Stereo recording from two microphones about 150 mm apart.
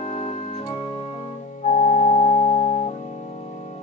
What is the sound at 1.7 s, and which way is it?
Organ, 50° left (ahead or behind).